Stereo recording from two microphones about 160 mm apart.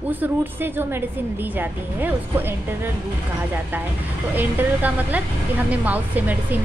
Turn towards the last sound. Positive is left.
turn(degrees=-10)  # may be behind; listen again after turning